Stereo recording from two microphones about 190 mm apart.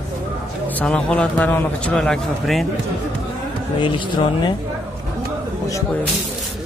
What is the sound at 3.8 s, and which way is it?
Speech, 25° left (ahead or behind).